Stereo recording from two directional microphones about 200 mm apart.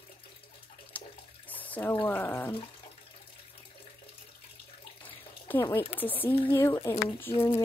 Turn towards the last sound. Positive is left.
turn(degrees=15)  # may be behind; listen again after turning